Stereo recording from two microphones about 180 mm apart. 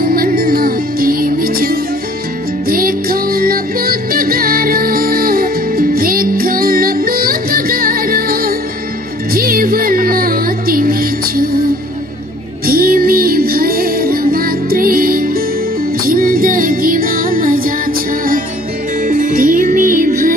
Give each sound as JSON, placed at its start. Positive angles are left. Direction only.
{"t": 0.0, "sound": "music", "side_deg": -55}
{"t": 12.6, "sound": "music", "side_deg": -55}
{"t": 19.0, "sound": "music", "side_deg": -50}